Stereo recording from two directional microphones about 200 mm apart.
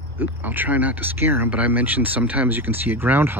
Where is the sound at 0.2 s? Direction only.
10° right (ahead or behind).